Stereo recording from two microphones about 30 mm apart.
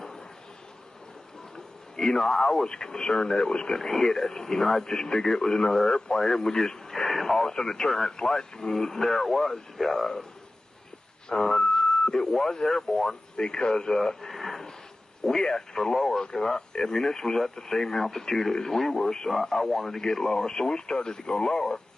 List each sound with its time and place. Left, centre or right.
2.0 s speech: left
7.1 s radio: centre
7.4 s speech: left
11.2 s speech: left
13.8 s speech: centre
15.2 s speech: left